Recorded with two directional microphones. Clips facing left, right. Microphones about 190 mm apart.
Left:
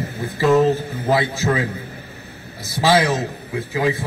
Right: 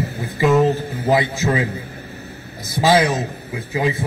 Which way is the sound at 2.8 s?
20° right (ahead or behind).